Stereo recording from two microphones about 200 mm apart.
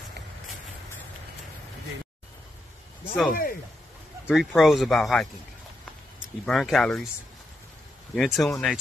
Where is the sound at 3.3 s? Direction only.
45° left (ahead or behind).